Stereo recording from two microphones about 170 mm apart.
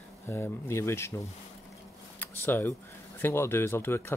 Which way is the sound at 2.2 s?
10° left (ahead or behind).